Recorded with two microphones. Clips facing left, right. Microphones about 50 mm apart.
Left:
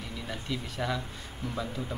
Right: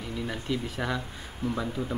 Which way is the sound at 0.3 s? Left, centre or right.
Centre.